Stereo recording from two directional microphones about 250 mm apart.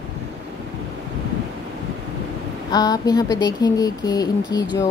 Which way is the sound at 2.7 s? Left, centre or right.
Centre.